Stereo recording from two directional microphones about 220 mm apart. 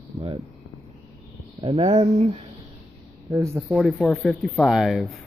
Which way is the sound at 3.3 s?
15° right (ahead or behind).